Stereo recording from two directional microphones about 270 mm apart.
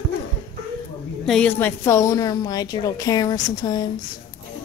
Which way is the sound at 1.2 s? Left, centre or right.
Centre.